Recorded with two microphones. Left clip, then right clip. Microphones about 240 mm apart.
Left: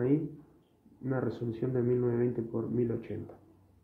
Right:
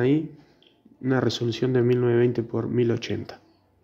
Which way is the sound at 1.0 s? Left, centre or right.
Right.